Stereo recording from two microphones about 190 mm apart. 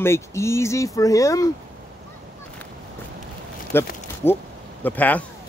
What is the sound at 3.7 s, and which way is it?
Speech, 10° left (ahead or behind).